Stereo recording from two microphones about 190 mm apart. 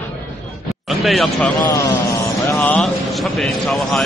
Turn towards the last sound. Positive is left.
turn(degrees=0)  # may be behind; listen again after turning